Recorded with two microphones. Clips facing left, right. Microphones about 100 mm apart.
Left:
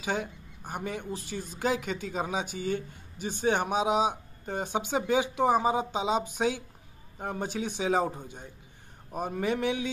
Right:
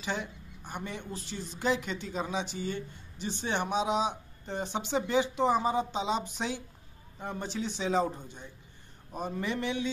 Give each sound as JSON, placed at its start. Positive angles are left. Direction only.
{"t": 0.0, "sound": "speech", "side_deg": 45}